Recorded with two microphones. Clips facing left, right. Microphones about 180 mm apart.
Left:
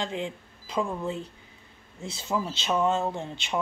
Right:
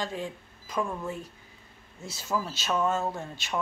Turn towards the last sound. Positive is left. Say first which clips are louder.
# left 2 dB
turn(degrees=20)  # may be behind; listen again after turning